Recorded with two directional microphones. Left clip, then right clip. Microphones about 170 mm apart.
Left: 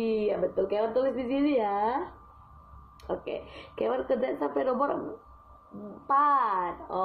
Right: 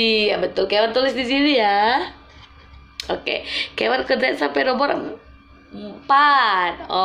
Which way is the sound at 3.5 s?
5° left (ahead or behind).